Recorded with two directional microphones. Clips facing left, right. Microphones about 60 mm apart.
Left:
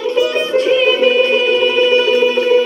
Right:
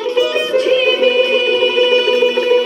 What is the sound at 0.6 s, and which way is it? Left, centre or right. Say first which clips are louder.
Music: left 1 dB; centre.